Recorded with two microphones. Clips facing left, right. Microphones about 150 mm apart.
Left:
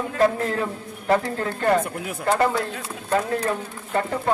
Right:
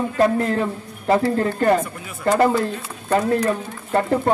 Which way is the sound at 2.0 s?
65° left (ahead or behind).